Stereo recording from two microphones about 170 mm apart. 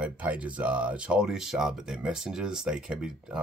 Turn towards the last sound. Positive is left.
turn(degrees=-5)  # may be behind; listen again after turning